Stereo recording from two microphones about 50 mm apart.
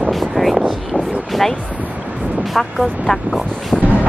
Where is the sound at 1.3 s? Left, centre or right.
Centre.